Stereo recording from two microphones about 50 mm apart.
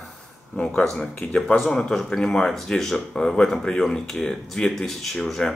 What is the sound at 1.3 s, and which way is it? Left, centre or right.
Speech, centre.